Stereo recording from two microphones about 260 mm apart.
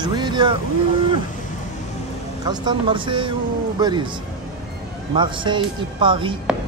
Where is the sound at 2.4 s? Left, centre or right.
Centre.